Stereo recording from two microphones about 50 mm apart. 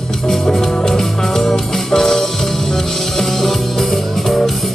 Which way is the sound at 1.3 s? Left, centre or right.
Centre.